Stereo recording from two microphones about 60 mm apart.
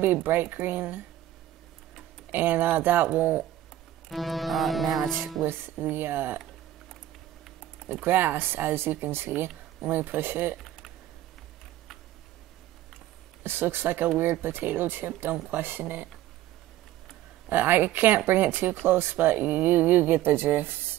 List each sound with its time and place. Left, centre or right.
0.0 s speech: right
2.3 s speech: right
4.1 s music: centre
5.4 s speech: right
7.9 s speech: right
13.4 s speech: right
17.5 s speech: right